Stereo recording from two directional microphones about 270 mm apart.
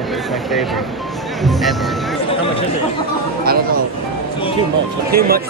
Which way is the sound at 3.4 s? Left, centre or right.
Right.